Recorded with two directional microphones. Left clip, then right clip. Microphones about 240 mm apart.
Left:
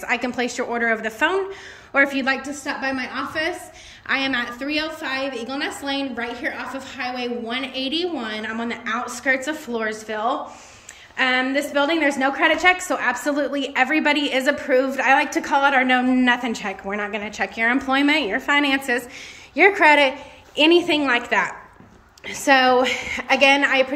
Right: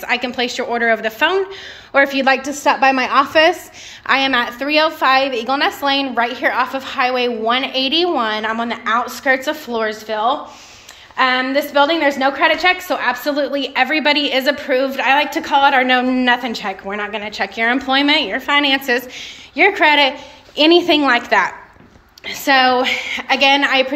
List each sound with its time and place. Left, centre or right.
0.0 s a woman's voice: centre